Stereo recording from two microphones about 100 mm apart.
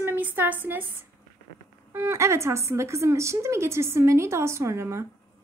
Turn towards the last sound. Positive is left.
turn(degrees=-30)  # may be behind; listen again after turning